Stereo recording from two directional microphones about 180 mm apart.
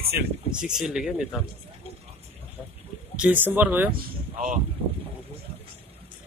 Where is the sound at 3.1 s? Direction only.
10° right (ahead or behind).